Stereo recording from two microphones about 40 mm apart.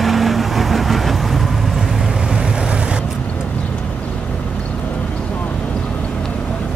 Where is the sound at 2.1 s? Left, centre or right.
Centre.